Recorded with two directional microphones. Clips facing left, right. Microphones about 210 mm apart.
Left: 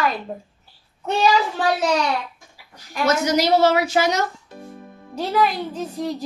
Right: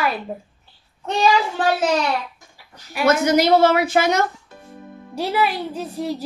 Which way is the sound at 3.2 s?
55° right (ahead or behind).